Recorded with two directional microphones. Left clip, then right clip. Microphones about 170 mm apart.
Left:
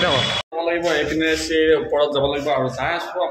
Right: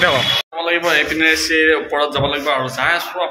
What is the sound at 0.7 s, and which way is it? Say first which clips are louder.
A man's voice: right 5 dB; 20° left (ahead or behind).